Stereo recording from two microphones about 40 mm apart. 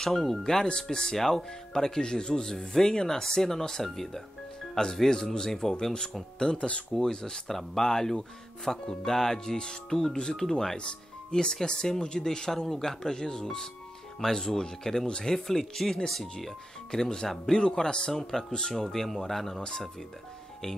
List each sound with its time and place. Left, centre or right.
0.0 s speech: centre
6.4 s speech: left
7.4 s speech: centre
11.6 s speech: centre
15.3 s speech: centre
18.9 s speech: centre
19.6 s speech: centre